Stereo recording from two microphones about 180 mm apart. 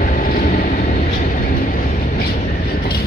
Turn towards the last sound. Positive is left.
turn(degrees=50)  # may be behind; listen again after turning